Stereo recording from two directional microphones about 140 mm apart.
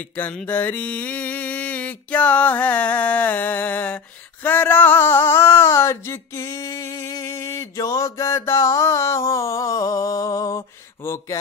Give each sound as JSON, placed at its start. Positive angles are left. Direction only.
{"t": 0.1, "sound": "mantra", "side_deg": 10}